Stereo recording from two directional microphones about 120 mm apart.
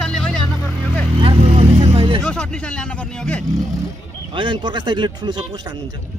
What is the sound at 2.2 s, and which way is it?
Speech, 5° left (ahead or behind).